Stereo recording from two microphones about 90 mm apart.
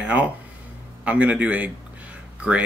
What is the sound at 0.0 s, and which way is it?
Speech, 15° right (ahead or behind).